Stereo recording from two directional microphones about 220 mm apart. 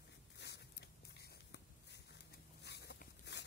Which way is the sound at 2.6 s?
50° left (ahead or behind).